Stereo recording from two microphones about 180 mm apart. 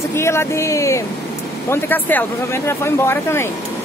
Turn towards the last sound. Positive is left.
turn(degrees=15)  # may be behind; listen again after turning